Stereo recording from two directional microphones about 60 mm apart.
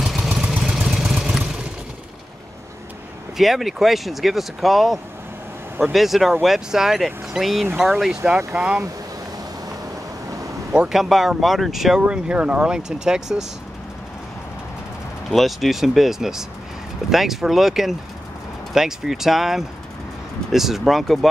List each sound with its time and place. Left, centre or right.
0.0 s vehicle: centre
0.3 s vehicle: centre
3.3 s speech: centre
8.5 s speech: centre
10.9 s speech: centre
12.1 s speech: centre
15.3 s speech: centre